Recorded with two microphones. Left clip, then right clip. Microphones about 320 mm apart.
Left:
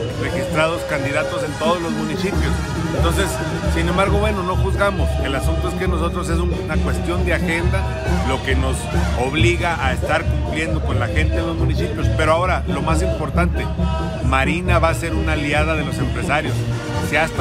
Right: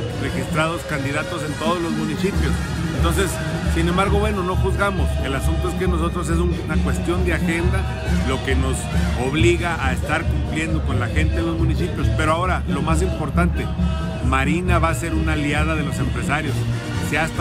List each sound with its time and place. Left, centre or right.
0.6 s speech: centre
3.0 s speech: centre
9.2 s speech: centre
12.2 s speech: centre